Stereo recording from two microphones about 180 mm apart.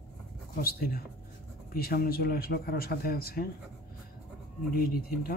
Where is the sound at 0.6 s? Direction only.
55° left (ahead or behind).